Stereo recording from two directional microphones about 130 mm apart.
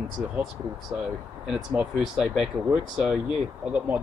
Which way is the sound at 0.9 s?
15° right (ahead or behind).